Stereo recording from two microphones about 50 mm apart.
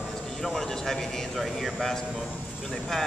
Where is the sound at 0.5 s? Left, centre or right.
Centre.